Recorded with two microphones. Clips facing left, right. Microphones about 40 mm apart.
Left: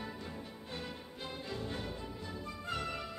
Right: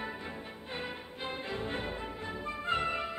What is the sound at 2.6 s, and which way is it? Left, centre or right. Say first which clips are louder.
Music: right 7 dB; right.